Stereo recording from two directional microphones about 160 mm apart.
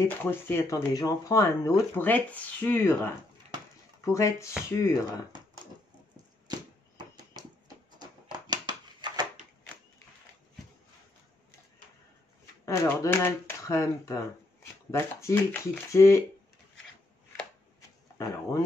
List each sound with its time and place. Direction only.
0.0 s speech: 15° left (ahead or behind)
8.0 s a sound: 25° right (ahead or behind)
12.6 s speech: 15° left (ahead or behind)
18.1 s speech: 20° left (ahead or behind)